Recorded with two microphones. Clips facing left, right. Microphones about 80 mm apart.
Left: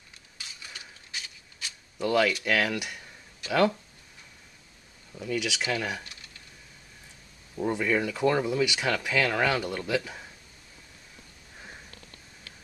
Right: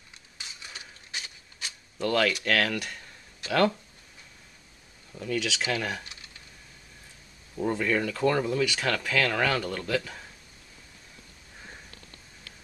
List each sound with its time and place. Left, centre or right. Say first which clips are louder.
0.4 s a sound: right 1 dB; right
2.0 s speech: left 1 dB; centre
5.1 s speech: even; centre
7.5 s speech: even; centre